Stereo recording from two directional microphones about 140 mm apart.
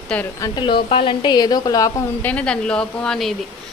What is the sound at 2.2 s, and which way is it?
Speech, 10° left (ahead or behind).